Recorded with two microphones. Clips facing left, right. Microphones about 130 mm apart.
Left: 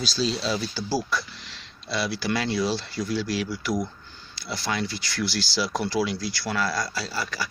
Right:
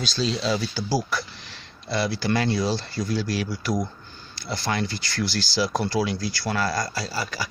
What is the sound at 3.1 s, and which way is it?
Speech, 50° right (ahead or behind).